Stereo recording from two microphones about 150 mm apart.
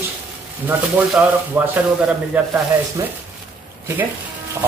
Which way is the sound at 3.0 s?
20° right (ahead or behind).